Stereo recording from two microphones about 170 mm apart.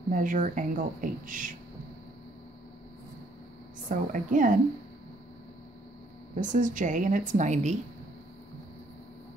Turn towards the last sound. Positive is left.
turn(degrees=-45)  # may be behind; listen again after turning